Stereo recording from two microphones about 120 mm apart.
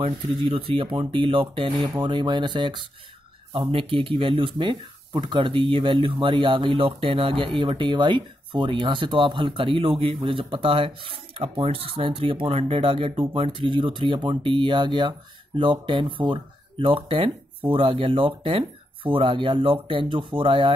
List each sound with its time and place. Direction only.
0.0 s speech: 45° right (ahead or behind)